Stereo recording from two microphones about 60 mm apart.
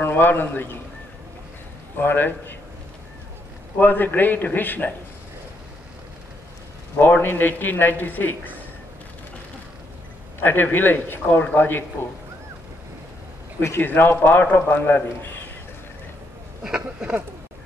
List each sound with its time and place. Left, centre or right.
0.0 s a man's voice: left
2.0 s a man's voice: left
3.7 s a man's voice: left
7.0 s a man's voice: left
10.4 s a man's voice: left
13.6 s a man's voice: left
16.6 s speech: centre